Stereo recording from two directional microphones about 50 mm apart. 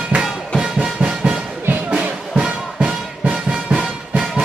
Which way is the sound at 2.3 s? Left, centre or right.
Centre.